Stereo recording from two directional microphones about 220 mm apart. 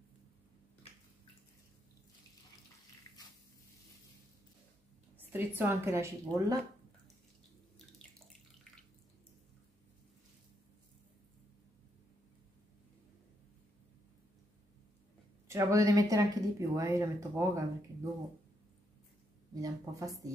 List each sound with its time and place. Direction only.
5.2 s speech: 10° right (ahead or behind)
15.4 s speech: 15° right (ahead or behind)
19.6 s speech: 15° right (ahead or behind)